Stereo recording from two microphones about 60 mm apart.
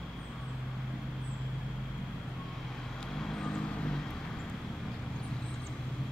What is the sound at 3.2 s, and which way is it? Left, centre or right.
Vehicle, centre.